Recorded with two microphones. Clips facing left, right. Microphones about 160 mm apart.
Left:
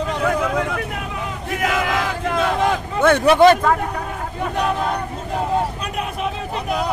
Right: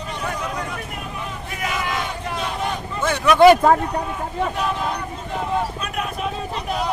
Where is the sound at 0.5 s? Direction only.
80° left.